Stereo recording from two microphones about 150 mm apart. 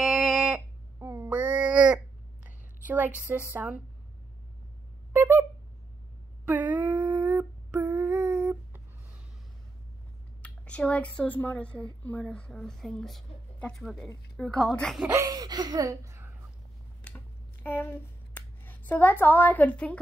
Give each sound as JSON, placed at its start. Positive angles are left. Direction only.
{"t": 0.0, "sound": "a sound", "side_deg": 0}
{"t": 0.9, "sound": "babbling", "side_deg": -20}
{"t": 3.3, "sound": "a woman's voice", "side_deg": -10}
{"t": 5.1, "sound": "a sound", "side_deg": -15}
{"t": 6.4, "sound": "humming", "side_deg": -10}
{"t": 8.1, "sound": "a sound", "side_deg": -10}
{"t": 10.4, "sound": "a woman's voice", "side_deg": 10}
{"t": 15.2, "sound": "speech", "side_deg": -25}
{"t": 17.6, "sound": "speech", "side_deg": 15}